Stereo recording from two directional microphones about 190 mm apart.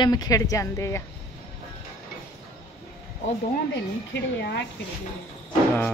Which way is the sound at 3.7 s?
65° left (ahead or behind).